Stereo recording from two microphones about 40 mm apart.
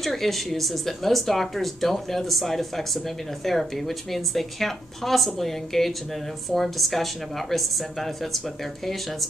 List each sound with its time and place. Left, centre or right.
0.0 s speech: centre